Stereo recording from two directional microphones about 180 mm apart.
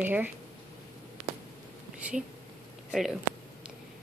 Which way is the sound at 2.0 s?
5° right (ahead or behind).